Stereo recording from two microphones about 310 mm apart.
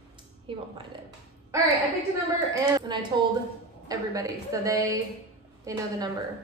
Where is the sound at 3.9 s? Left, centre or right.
Centre.